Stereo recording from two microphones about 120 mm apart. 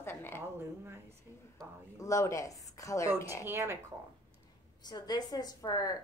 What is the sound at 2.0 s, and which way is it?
A woman's voice, 25° left (ahead or behind).